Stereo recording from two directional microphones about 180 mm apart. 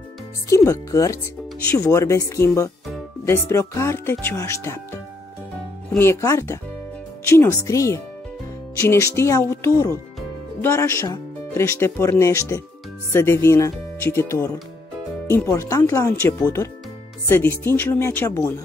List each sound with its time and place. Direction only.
0.7 s speech: 15° left (ahead or behind)
5.9 s speech: 15° left (ahead or behind)